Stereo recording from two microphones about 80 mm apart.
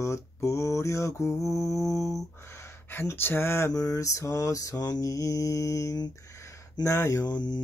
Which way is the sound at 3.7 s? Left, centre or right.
Left.